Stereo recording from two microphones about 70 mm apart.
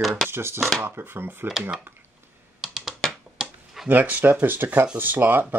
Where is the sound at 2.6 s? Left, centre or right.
Centre.